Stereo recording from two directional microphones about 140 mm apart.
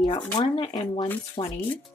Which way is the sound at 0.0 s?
35° left (ahead or behind).